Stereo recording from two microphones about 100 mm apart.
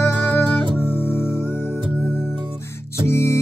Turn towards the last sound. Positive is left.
turn(degrees=30)  # may be behind; listen again after turning